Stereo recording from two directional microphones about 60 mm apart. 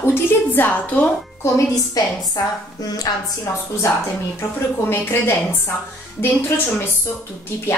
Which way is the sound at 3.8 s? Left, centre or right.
Left.